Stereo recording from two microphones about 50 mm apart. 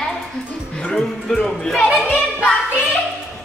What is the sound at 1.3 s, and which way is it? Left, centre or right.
Music, centre.